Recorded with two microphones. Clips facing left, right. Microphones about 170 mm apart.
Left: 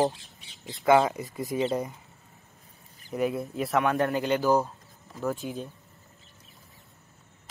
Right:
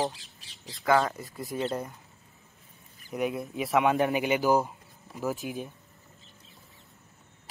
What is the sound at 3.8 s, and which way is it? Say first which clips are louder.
Speech: even; 15° right (ahead or behind).